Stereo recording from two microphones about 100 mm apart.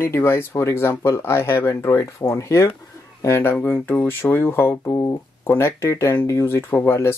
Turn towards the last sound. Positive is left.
turn(degrees=25)  # may be behind; listen again after turning